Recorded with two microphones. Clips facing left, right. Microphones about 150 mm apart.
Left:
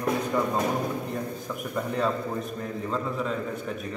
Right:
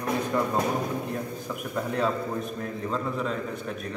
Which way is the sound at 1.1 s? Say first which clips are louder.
Even; centre (ahead or behind).